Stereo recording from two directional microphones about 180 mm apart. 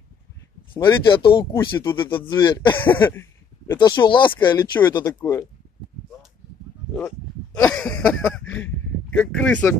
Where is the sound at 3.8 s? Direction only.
25° left (ahead or behind).